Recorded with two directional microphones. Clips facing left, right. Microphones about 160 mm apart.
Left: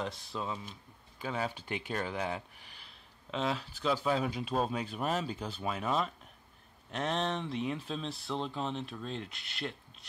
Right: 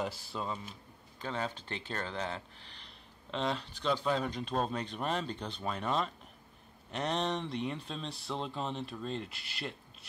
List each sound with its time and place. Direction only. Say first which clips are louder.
0.0 s speech: right 1 dB; 5° right (ahead or behind)